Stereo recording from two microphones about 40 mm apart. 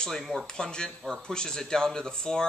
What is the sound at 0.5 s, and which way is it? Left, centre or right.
Speech, centre.